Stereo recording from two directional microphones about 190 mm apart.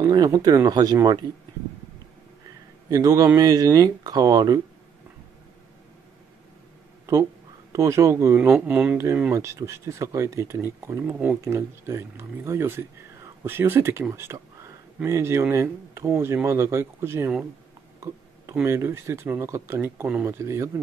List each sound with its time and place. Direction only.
0.0 s speech: 20° right (ahead or behind)
2.9 s speech: 20° right (ahead or behind)
7.7 s speech: 15° right (ahead or behind)